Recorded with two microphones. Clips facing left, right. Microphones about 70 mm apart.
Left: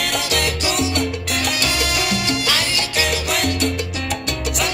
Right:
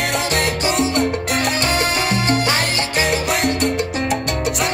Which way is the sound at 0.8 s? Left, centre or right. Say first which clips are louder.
Right 3 dB; right.